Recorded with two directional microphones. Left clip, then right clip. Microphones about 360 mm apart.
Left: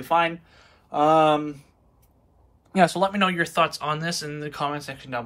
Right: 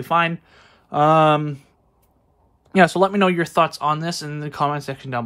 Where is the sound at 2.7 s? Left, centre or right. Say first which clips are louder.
Right 5 dB; centre.